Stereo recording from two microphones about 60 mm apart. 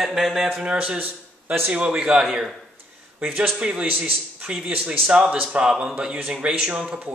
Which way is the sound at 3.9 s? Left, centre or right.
Right.